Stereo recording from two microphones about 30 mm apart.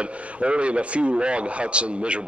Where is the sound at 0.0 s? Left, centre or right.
Right.